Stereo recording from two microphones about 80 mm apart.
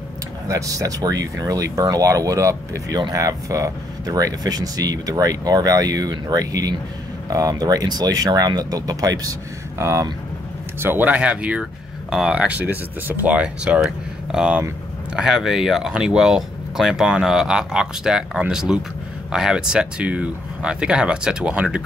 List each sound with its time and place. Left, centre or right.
0.5 s speech: right
9.8 s speech: right
10.8 s speech: right